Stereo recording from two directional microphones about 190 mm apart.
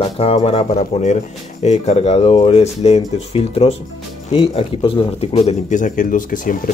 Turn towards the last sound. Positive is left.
turn(degrees=45)  # may be behind; listen again after turning